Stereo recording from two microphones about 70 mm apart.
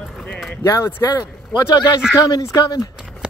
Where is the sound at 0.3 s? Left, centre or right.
Centre.